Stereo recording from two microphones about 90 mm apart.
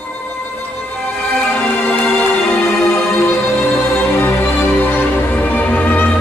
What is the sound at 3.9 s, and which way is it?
Music, 25° left (ahead or behind).